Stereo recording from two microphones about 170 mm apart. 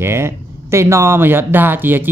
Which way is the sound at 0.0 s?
15° right (ahead or behind).